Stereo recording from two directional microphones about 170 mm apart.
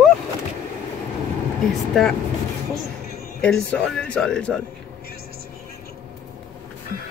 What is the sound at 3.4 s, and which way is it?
Speech, 5° left (ahead or behind).